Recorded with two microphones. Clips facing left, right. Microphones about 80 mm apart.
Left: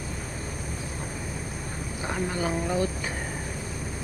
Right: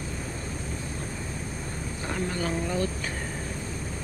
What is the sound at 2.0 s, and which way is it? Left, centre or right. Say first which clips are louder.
Speech: left 1 dB; centre.